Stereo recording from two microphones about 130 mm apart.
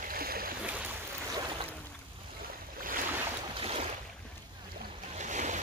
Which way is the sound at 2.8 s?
90° right.